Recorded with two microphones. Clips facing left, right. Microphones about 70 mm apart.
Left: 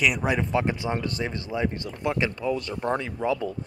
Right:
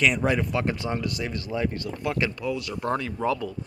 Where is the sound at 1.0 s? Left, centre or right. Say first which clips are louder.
Even; left.